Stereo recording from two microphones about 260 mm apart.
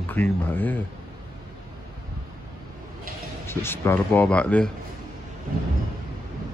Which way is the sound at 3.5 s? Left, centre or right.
Centre.